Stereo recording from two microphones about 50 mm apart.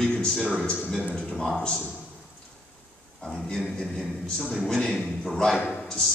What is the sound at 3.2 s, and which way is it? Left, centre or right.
A man's voice, centre.